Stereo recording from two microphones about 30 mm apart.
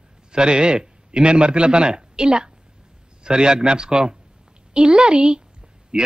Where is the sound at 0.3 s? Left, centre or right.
Right.